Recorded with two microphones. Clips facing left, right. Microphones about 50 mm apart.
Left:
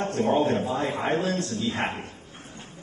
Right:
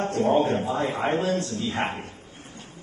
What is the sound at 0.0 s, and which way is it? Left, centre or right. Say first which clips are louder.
A man's voice: right 2 dB; right.